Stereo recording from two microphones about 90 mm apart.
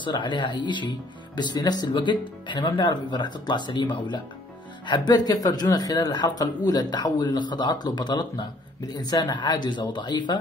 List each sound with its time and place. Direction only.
0.0 s speech: 65° left (ahead or behind)